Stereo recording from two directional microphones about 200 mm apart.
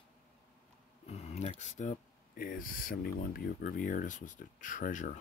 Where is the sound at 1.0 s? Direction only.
35° left (ahead or behind).